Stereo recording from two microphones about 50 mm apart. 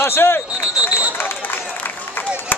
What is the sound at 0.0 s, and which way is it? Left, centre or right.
Speech, left.